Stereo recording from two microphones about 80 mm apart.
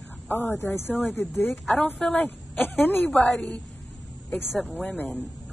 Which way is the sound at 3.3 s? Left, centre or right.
Centre.